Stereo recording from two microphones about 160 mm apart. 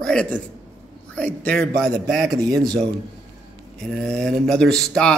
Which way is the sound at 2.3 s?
25° right (ahead or behind).